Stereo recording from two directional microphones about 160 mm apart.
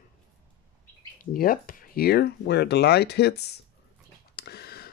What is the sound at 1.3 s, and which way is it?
Speech, 65° left (ahead or behind).